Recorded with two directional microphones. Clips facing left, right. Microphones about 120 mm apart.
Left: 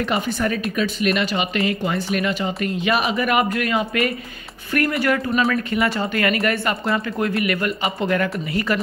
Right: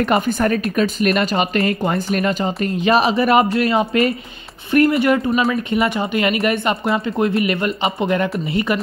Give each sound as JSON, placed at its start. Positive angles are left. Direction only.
{"t": 0.1, "sound": "speech", "side_deg": -45}